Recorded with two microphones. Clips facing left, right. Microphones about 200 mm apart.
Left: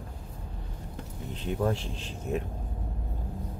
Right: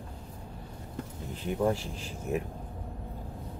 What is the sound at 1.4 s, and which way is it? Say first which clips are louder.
Speech: right 1 dB; 5° right (ahead or behind).